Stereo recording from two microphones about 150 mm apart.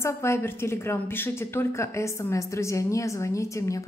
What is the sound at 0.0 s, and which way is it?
A woman's voice, 15° left (ahead or behind).